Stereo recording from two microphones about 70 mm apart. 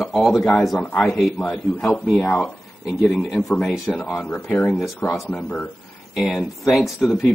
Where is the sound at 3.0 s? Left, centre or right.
Centre.